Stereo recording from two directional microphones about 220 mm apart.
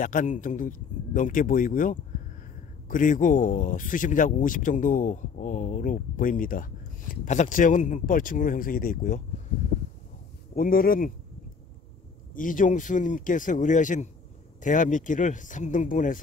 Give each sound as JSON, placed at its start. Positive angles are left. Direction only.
{"t": 0.0, "sound": "speech", "side_deg": 35}
{"t": 10.5, "sound": "speech", "side_deg": 40}
{"t": 12.4, "sound": "speech", "side_deg": 35}